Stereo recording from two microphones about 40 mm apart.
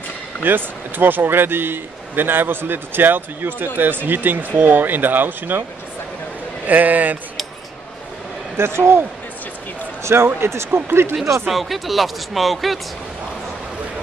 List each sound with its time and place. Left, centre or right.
0.4 s speech: right
6.7 s speech: right
8.5 s a man's voice: right
10.1 s speech: right
11.1 s speech: centre